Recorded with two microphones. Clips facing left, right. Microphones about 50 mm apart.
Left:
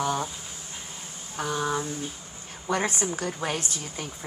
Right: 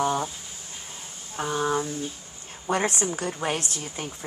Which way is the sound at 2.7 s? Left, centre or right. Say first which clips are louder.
Right 2 dB; right.